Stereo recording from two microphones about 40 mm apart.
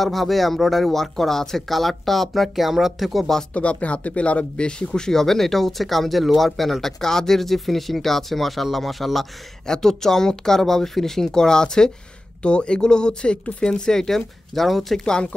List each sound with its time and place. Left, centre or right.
0.0 s speech: centre
3.5 s speech: left; by 9.3 s centre
9.7 s speech: centre
15.0 s speech: centre